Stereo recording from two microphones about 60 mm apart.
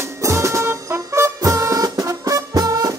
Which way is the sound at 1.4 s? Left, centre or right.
Right.